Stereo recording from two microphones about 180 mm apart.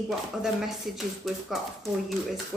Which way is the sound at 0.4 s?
Centre (ahead or behind).